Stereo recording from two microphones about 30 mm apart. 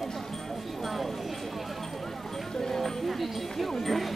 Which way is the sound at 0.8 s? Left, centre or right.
Centre.